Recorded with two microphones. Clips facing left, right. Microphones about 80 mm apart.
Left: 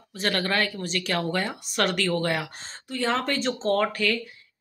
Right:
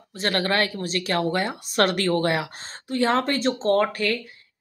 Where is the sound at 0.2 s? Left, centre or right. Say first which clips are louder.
Right 2 dB; right.